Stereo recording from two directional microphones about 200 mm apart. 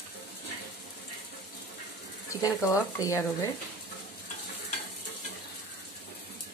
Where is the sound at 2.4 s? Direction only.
15° left (ahead or behind).